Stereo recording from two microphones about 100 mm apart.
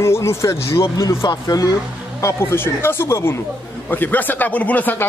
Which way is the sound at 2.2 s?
25° left (ahead or behind).